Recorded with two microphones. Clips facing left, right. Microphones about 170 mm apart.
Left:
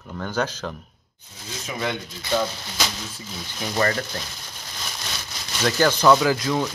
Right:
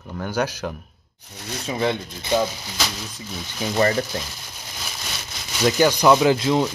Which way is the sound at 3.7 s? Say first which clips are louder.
Right 3 dB; 20° right (ahead or behind).